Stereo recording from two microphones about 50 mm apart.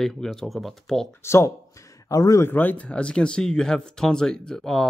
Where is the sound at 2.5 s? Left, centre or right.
Left.